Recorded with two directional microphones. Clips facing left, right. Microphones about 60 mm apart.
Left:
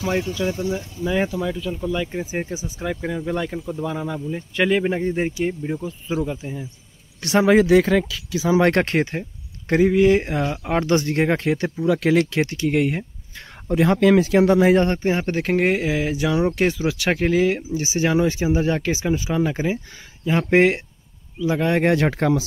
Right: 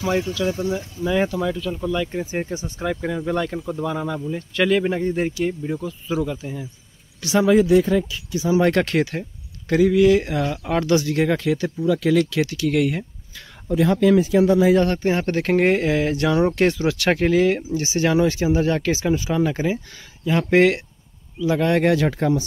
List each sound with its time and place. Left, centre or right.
0.0 s speech: centre
0.7 s speech: centre
7.2 s speech: left
8.5 s speech: left
8.8 s speech: left
13.7 s speech: left
14.8 s speech: left
15.0 s speech: centre
21.9 s speech: left